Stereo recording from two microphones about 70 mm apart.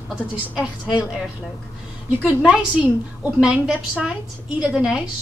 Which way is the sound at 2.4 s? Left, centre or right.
Centre.